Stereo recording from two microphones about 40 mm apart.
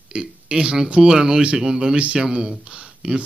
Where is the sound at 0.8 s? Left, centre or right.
Right.